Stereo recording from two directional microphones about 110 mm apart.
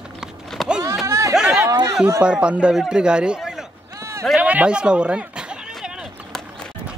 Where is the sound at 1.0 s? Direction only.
25° right (ahead or behind).